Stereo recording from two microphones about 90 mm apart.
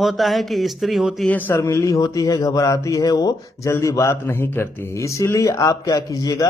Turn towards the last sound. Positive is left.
turn(degrees=40)  # may be behind; listen again after turning